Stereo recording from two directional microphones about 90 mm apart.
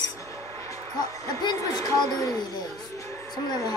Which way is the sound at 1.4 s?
45° left (ahead or behind).